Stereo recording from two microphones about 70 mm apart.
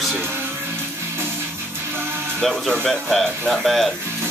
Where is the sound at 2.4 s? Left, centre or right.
Centre.